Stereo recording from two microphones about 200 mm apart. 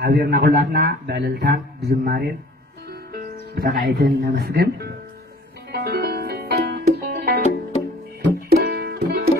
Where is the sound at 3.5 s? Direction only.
45° right (ahead or behind).